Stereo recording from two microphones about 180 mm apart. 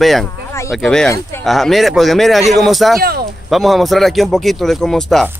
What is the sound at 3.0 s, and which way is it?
Speech, 60° right (ahead or behind).